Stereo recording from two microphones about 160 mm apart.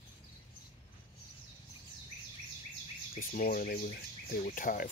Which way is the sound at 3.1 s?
65° left (ahead or behind).